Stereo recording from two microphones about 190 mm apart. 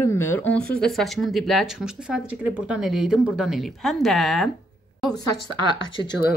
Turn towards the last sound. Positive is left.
turn(degrees=25)  # may be behind; listen again after turning